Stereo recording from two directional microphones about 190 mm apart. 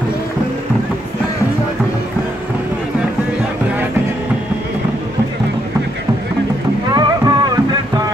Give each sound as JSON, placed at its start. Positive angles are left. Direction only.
{"t": 6.9, "sound": "rowboat", "side_deg": -20}